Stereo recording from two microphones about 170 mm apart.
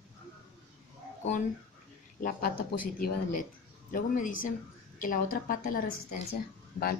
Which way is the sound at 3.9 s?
50° left (ahead or behind).